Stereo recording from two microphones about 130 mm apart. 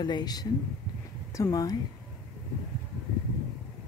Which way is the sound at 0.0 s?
35° left (ahead or behind).